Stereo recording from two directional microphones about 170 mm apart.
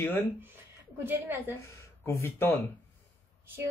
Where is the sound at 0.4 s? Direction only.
10° right (ahead or behind).